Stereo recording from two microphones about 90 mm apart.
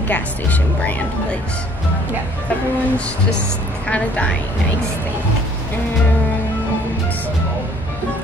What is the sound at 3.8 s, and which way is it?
Speech, 15° left (ahead or behind).